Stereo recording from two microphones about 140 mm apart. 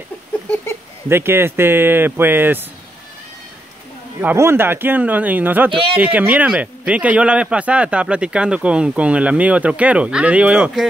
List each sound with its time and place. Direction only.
1.0 s a man's voice: 15° right (ahead or behind)
4.2 s a man's voice: 15° right (ahead or behind)
5.7 s speech: 40° right (ahead or behind)
5.9 s a man's voice: 10° right (ahead or behind)